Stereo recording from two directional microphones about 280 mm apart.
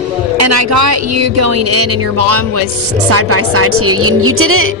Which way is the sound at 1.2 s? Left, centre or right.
Right.